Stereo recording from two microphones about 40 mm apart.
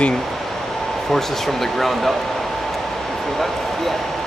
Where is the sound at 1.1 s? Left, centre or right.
Centre.